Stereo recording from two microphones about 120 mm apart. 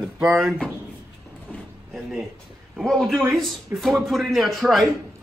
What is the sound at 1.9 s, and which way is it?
A man's voice, centre (ahead or behind).